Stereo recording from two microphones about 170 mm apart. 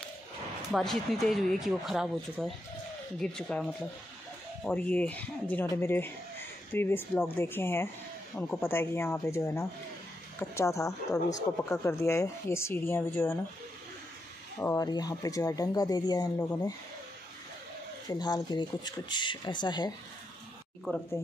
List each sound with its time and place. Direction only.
0.7 s speech: centre (ahead or behind)
14.6 s speech: 20° left (ahead or behind)
18.0 s speech: 25° left (ahead or behind)
20.9 s speech: 10° left (ahead or behind)